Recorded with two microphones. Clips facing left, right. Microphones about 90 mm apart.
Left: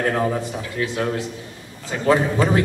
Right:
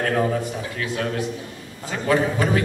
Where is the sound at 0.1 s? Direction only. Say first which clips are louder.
Even; 25° left (ahead or behind).